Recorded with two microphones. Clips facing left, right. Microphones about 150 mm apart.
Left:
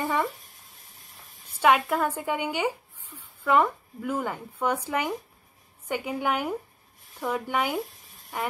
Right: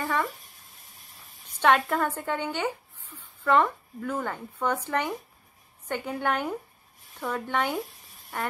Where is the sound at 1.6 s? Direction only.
5° left (ahead or behind).